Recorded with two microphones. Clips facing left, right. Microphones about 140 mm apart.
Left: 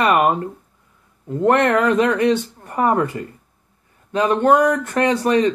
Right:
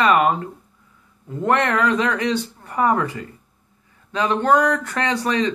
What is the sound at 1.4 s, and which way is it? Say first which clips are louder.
Speech: left 4 dB; 35° left (ahead or behind).